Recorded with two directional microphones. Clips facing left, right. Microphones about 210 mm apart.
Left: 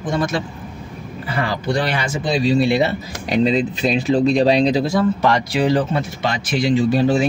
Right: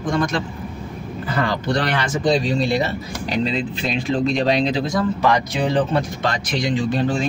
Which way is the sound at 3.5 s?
40° left (ahead or behind).